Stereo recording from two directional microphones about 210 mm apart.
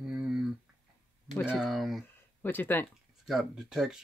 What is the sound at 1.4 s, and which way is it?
Speech, centre (ahead or behind).